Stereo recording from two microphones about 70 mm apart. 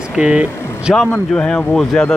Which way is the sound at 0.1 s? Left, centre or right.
Centre.